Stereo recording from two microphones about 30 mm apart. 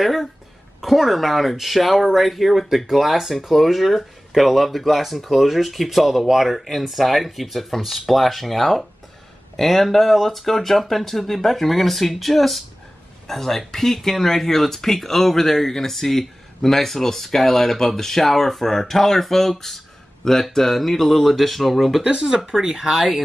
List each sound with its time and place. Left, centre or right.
0.0 s a sound: centre
0.7 s speech: centre
20.5 s speech: centre
22.0 s speech: right
22.6 s speech: centre